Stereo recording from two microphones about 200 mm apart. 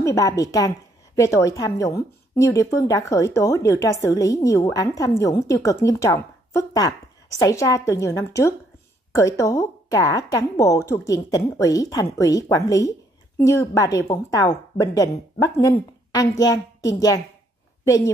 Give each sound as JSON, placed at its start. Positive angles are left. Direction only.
{"t": 0.0, "sound": "a woman's voice", "side_deg": 15}